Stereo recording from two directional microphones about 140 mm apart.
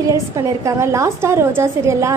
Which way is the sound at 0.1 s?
20° right (ahead or behind).